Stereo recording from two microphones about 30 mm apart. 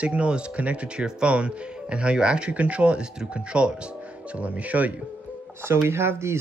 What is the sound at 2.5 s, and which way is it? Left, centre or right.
Speech, right.